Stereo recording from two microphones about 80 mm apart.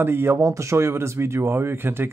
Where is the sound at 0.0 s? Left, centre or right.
Right.